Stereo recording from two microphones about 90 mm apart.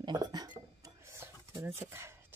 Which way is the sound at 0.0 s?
50° right (ahead or behind).